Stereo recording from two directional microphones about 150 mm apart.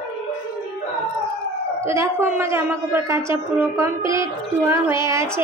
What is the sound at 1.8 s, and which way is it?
A woman's voice, 15° right (ahead or behind).